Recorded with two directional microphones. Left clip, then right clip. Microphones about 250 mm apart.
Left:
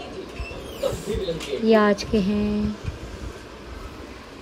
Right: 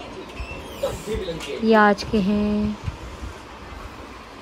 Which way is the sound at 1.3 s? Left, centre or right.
Centre.